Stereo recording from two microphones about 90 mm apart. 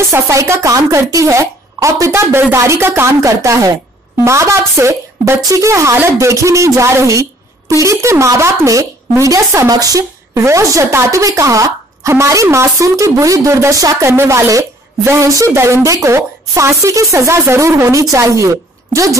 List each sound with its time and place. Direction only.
0.1 s a woman's voice: 30° right (ahead or behind)